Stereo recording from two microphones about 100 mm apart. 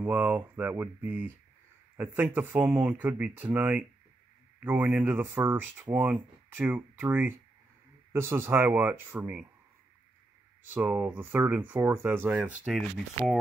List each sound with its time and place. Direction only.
0.0 s speech: 15° right (ahead or behind)
10.7 s speech: 20° right (ahead or behind)
12.3 s speech: 10° right (ahead or behind)